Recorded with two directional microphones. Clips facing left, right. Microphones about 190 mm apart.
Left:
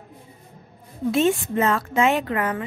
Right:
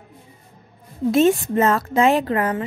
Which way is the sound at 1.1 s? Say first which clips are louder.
Right 4 dB; 40° right (ahead or behind).